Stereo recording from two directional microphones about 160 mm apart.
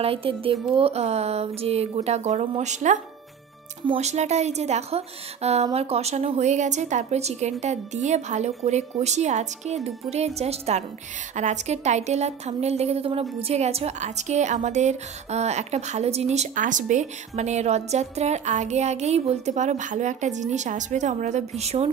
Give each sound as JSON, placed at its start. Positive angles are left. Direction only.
{"t": 0.0, "sound": "a woman's voice", "side_deg": -35}